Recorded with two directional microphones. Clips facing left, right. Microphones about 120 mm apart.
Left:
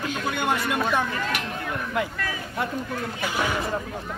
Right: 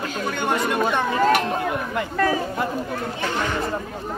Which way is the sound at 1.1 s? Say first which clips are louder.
Right 10 dB; 40° right (ahead or behind).